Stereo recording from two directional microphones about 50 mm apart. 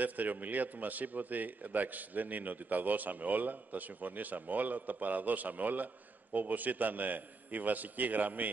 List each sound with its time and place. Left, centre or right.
0.0 s a man's voice: right